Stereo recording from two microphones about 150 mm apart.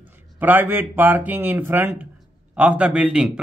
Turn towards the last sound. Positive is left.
turn(degrees=-5)  # may be behind; listen again after turning